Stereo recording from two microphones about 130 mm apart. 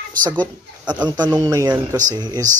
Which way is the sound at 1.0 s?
30° right (ahead or behind).